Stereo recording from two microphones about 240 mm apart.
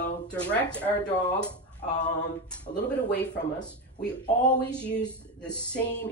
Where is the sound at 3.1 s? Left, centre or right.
Left.